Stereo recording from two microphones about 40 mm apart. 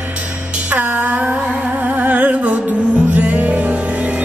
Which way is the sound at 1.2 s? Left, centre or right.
Right.